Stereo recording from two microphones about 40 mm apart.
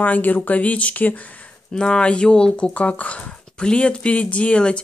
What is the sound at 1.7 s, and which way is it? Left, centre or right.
Speech, left.